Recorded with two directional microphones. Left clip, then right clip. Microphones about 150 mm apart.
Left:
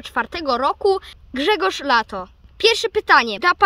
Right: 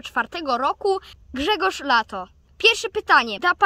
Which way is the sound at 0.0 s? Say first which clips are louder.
Left 2 dB; 30° left (ahead or behind).